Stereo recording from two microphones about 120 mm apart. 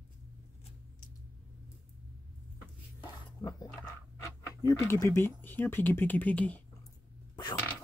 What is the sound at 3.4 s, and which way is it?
Speech, 35° left (ahead or behind).